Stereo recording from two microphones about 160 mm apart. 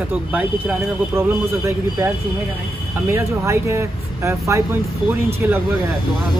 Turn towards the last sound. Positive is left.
turn(degrees=-10)  # may be behind; listen again after turning